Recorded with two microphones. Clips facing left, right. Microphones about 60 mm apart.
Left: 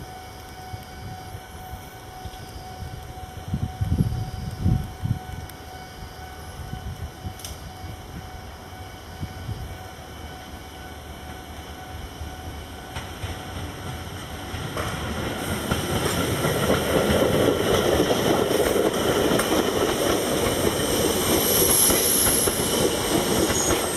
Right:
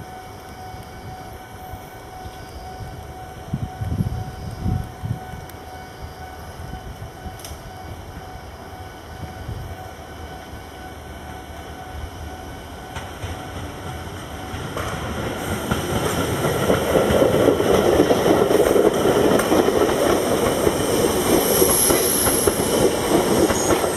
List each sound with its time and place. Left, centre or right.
12.9 s train: centre
17.7 s vehicle: right
18.6 s vehicle: centre
19.0 s vehicle: centre
19.5 s vehicle: right; by 20.9 s centre
20.9 s train: centre